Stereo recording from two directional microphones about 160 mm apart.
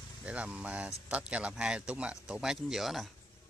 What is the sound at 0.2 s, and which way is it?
Speech, 10° right (ahead or behind).